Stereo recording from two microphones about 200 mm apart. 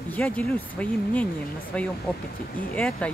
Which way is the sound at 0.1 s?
5° left (ahead or behind).